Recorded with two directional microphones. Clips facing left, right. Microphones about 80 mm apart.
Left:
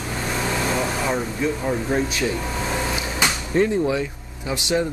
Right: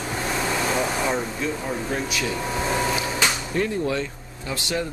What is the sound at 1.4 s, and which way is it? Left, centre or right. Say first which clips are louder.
Speech: left 4 dB; centre.